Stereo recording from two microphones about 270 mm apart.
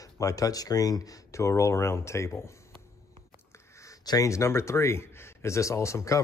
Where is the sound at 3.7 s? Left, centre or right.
Centre.